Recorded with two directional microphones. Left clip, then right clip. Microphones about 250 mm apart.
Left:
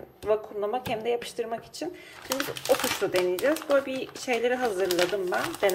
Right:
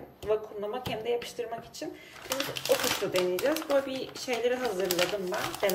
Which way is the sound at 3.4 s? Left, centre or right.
Centre.